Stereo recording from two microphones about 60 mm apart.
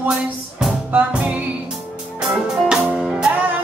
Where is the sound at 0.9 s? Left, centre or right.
Right.